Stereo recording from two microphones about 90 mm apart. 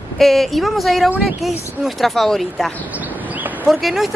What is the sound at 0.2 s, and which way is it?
Speech, centre (ahead or behind).